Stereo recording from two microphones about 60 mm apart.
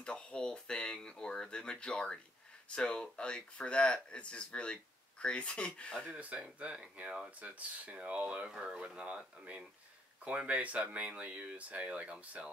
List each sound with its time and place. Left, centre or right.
0.0 s speech: centre
6.3 s speech: centre